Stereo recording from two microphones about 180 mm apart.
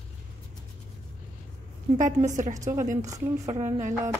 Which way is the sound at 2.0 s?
45° right (ahead or behind).